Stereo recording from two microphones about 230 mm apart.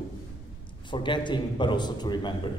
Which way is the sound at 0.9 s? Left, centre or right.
Left.